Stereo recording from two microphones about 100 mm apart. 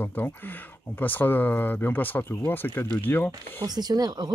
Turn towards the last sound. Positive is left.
turn(degrees=-40)  # may be behind; listen again after turning